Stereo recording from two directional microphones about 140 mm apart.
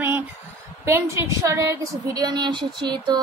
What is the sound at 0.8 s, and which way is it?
A woman's voice, 20° right (ahead or behind).